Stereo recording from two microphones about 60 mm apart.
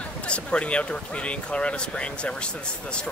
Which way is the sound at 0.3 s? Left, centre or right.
Centre.